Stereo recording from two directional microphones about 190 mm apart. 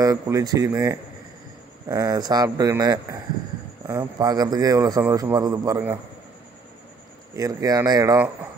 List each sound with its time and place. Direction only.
0.0 s a man's voice: 20° right (ahead or behind)
7.3 s speech: 20° right (ahead or behind)